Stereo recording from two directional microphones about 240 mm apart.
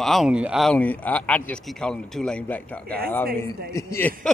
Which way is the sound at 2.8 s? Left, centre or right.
Right.